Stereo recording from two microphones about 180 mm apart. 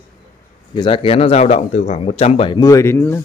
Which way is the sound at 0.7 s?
30° left (ahead or behind).